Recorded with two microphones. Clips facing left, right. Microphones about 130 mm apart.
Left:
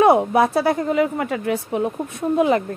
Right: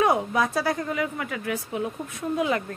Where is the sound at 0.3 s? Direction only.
30° left (ahead or behind).